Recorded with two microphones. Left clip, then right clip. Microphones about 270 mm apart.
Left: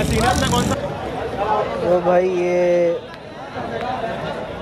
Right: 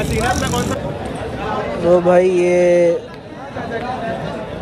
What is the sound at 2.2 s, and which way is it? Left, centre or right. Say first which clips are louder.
Mantra: right 4 dB; left.